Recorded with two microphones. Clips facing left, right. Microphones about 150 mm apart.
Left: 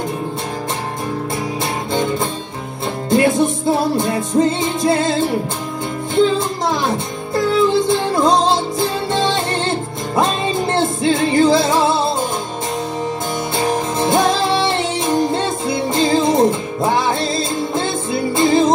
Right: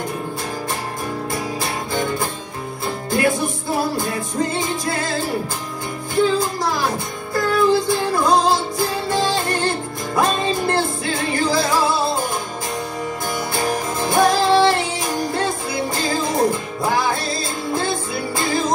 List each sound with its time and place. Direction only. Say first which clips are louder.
3.1 s music: left 6 dB; 20° left (ahead or behind)
13.6 s music: left 5 dB; 20° left (ahead or behind)